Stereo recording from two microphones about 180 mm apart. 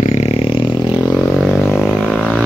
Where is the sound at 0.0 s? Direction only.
35° left (ahead or behind).